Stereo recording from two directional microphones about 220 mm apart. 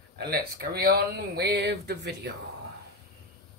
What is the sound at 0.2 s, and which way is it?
Speech, 45° right (ahead or behind).